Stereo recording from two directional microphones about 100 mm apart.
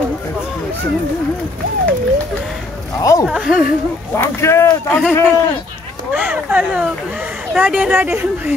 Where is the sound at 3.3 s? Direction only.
5° right (ahead or behind).